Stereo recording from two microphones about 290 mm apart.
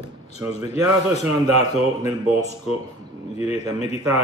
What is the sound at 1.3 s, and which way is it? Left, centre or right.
Speech, centre.